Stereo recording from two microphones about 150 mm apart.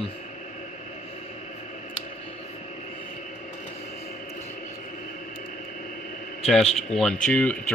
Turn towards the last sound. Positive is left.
turn(degrees=10)  # may be behind; listen again after turning